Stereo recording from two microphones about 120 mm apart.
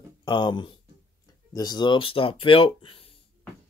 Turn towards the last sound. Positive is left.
turn(degrees=50)  # may be behind; listen again after turning